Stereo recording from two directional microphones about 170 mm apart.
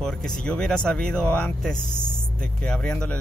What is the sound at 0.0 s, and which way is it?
Speech, 5° left (ahead or behind).